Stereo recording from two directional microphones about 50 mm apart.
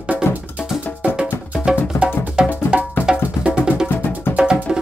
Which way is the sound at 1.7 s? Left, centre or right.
Right.